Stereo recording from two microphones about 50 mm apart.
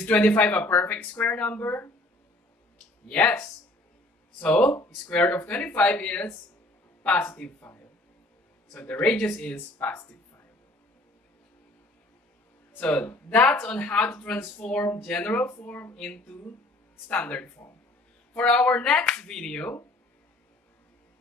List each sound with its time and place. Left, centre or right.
0.0 s speech: left
3.1 s speech: left
8.7 s speech: left
13.3 s speech: left